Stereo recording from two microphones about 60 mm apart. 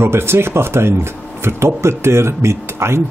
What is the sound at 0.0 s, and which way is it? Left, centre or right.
Speech, right.